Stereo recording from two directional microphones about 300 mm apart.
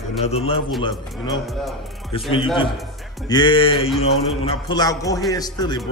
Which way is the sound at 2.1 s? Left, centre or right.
Centre.